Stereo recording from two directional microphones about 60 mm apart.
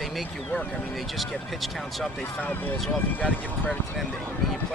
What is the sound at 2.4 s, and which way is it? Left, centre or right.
Speech, left.